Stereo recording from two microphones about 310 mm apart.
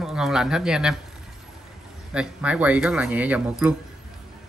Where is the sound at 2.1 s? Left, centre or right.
Centre.